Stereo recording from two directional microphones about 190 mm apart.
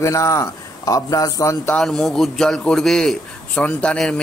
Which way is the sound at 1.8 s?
Centre (ahead or behind).